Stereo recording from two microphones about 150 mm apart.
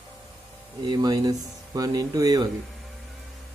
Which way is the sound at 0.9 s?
25° right (ahead or behind).